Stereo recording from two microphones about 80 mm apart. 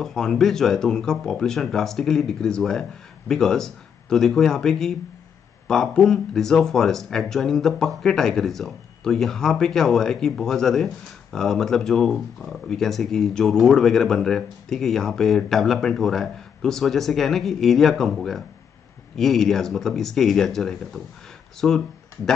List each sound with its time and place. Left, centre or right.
0.0 s speech: centre